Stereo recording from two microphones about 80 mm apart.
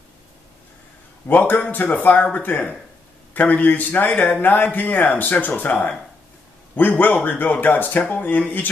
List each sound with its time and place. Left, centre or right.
1.2 s speech: left